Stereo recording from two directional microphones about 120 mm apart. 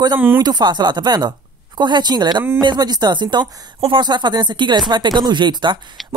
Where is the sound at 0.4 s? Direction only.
35° right (ahead or behind).